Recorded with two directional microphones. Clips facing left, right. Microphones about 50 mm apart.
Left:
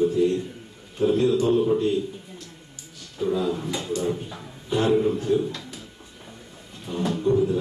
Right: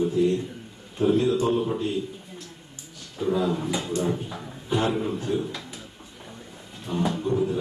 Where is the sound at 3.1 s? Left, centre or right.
Centre.